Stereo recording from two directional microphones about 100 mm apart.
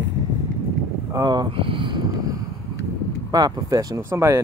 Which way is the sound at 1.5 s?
60° right (ahead or behind).